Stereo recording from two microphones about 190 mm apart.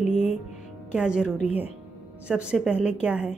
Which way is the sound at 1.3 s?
35° left (ahead or behind).